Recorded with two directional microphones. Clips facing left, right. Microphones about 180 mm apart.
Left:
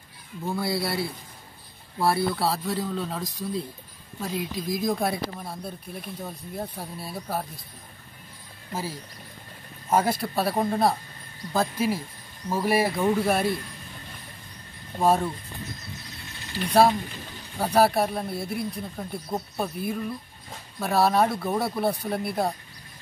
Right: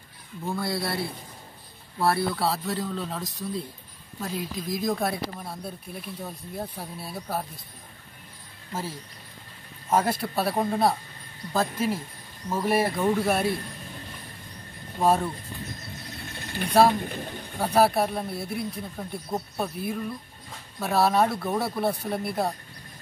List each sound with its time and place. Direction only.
0.5 s speech: centre (ahead or behind)
9.8 s speech: centre (ahead or behind)
15.0 s speech: centre (ahead or behind)
16.2 s ratchet: 55° right (ahead or behind)
17.0 s a sound: 50° right (ahead or behind)
17.6 s speech: centre (ahead or behind)